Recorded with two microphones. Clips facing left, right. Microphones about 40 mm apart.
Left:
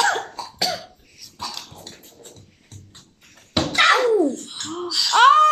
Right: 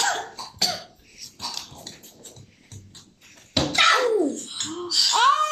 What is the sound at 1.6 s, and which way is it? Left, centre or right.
Dog, centre.